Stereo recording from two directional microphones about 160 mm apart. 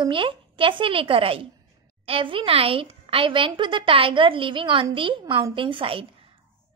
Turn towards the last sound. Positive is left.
turn(degrees=-35)  # may be behind; listen again after turning